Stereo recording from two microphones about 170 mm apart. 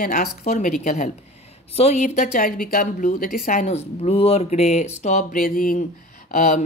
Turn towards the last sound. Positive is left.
turn(degrees=50)  # may be behind; listen again after turning